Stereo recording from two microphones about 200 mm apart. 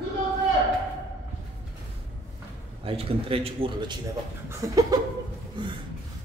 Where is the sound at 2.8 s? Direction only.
30° right (ahead or behind).